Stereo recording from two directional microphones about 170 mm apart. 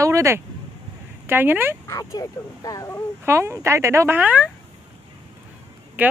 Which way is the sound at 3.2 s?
15° right (ahead or behind).